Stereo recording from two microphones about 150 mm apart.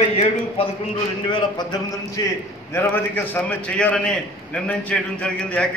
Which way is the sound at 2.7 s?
15° left (ahead or behind).